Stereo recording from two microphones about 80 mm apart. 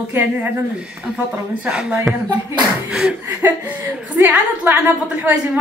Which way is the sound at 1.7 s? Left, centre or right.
Centre.